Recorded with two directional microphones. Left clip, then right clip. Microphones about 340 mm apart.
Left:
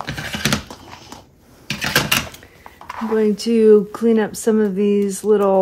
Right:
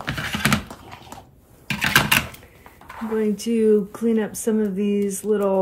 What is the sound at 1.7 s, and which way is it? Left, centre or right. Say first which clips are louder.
Typing: even; centre.